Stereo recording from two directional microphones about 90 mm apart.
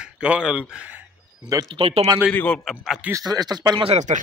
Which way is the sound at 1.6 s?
85° right.